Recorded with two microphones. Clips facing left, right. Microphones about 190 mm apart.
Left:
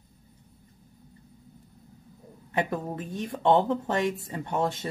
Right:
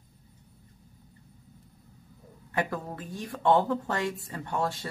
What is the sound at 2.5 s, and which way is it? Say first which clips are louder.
Speech: left 3 dB; 20° left (ahead or behind).